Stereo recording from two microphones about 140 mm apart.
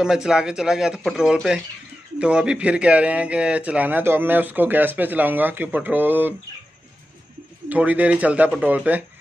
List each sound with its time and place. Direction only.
0.0 s speech: 5° right (ahead or behind)
7.7 s speech: 10° right (ahead or behind)